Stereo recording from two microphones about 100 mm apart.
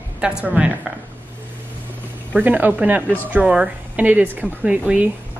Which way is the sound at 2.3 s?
15° right (ahead or behind).